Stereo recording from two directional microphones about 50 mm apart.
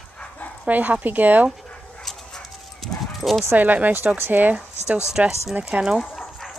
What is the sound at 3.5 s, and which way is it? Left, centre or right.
Speech, right.